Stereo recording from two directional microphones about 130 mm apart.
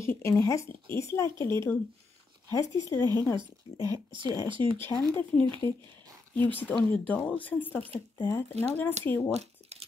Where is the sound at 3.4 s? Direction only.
40° right (ahead or behind).